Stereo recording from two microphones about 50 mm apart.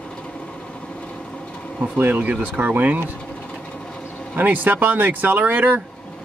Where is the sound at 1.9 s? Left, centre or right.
Right.